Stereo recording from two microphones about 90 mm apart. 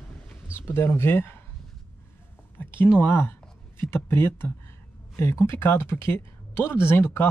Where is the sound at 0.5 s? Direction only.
30° left (ahead or behind).